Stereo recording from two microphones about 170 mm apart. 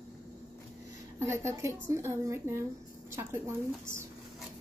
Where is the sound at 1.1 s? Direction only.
15° right (ahead or behind).